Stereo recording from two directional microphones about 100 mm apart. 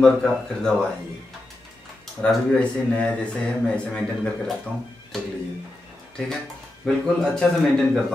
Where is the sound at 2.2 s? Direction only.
10° left (ahead or behind).